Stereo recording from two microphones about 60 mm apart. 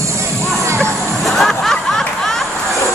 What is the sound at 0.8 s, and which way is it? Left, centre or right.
Music, centre.